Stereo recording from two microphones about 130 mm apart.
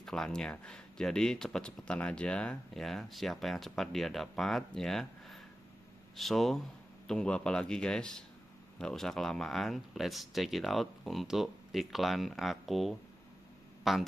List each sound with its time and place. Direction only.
0.0 s speech: 5° left (ahead or behind)